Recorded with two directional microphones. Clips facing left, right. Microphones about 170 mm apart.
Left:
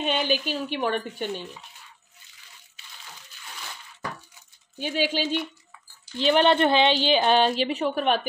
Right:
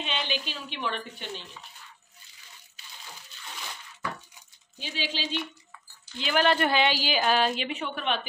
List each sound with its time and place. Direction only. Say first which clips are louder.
0.0 s a woman's voice: left 7 dB; 50° left (ahead or behind)
4.7 s a woman's voice: left 9 dB; 50° left (ahead or behind)
6.1 s speech: left 5 dB; 30° left (ahead or behind)